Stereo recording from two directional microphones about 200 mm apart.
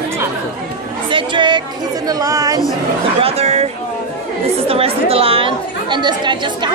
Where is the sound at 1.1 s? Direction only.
25° right (ahead or behind).